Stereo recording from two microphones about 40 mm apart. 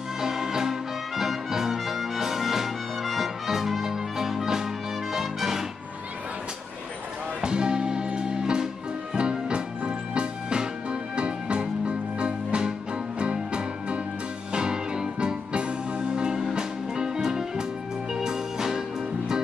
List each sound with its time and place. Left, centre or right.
0.2 s music: centre
7.4 s music: right